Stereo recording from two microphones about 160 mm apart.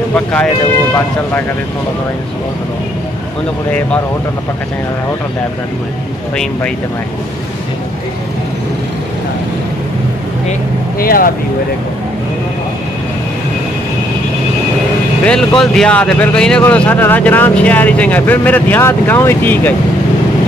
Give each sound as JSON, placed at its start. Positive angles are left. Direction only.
{"t": 0.1, "sound": "speech", "side_deg": 10}
{"t": 11.0, "sound": "speech", "side_deg": 65}
{"t": 15.2, "sound": "speech", "side_deg": 5}